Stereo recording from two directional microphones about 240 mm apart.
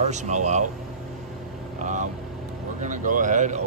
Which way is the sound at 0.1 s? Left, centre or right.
Right.